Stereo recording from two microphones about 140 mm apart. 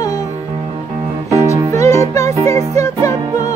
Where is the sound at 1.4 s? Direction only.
20° left (ahead or behind).